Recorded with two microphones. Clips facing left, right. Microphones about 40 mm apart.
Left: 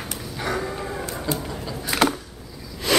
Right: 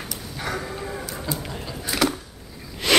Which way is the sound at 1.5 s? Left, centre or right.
Centre.